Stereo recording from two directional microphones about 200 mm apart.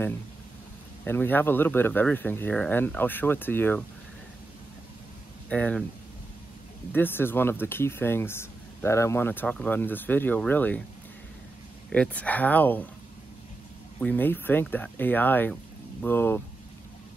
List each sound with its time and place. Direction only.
1.0 s speech: 10° left (ahead or behind)
5.5 s speech: 5° left (ahead or behind)
6.9 s speech: 10° left (ahead or behind)
11.9 s speech: 5° left (ahead or behind)
13.9 s speech: 10° left (ahead or behind)